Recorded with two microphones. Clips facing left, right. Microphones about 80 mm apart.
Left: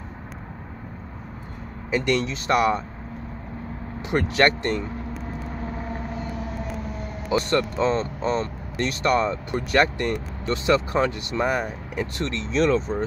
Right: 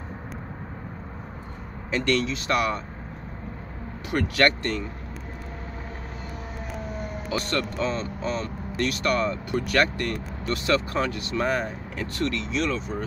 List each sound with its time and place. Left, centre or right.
1.9 s speech: centre
4.1 s speech: left
7.2 s speech: left